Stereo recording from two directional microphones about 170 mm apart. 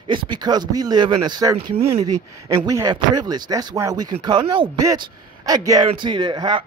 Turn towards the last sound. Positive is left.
turn(degrees=-25)  # may be behind; listen again after turning